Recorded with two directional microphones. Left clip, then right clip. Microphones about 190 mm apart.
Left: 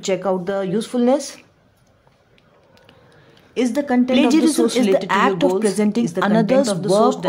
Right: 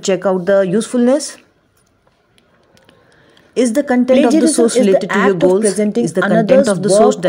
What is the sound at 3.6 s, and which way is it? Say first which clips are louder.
Speech: right 5 dB; 20° right (ahead or behind).